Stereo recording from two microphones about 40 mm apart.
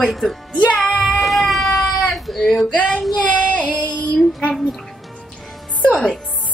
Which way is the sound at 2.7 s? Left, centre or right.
Left.